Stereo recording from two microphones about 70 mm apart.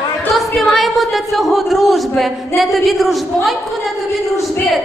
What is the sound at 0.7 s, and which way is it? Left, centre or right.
Speech, centre.